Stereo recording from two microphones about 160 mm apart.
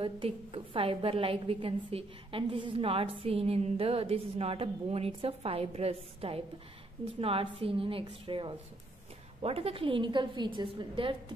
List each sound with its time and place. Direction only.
0.0 s a woman's voice: 35° right (ahead or behind)